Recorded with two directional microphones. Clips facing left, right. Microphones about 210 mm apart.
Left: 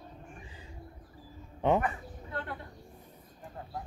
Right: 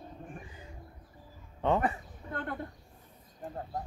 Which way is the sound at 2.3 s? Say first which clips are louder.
Right 2 dB; 50° right (ahead or behind).